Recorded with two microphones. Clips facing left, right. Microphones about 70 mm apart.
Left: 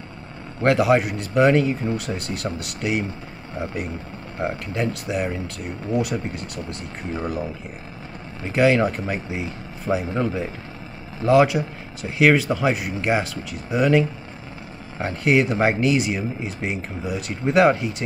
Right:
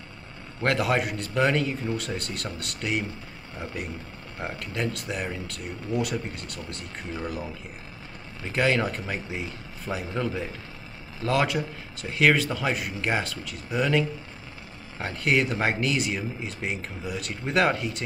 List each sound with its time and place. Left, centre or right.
0.6 s speech: centre
4.4 s speech: left